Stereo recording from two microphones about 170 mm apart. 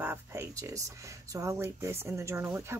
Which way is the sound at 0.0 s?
15° right (ahead or behind).